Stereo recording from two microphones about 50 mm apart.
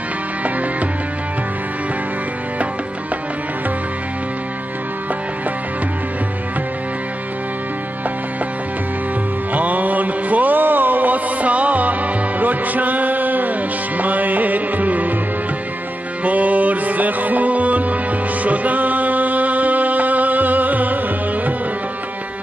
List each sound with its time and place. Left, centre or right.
9.5 s music: right
16.3 s music: right